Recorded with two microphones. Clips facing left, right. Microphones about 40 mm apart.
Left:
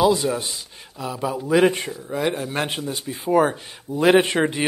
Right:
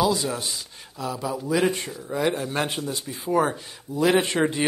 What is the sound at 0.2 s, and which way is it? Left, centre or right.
Speech, centre.